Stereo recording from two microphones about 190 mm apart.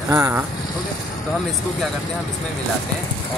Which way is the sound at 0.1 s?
15° right (ahead or behind).